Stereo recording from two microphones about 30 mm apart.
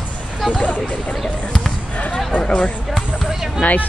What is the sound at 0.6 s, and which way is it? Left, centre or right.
Speech, left.